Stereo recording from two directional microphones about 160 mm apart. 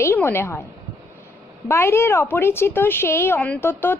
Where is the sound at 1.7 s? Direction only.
15° left (ahead or behind).